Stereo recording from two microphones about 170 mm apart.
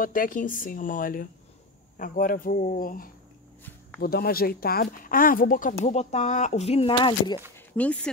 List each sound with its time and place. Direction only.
0.0 s speech: 55° left (ahead or behind); by 7.3 s 30° left (ahead or behind)
7.5 s speech: 10° left (ahead or behind)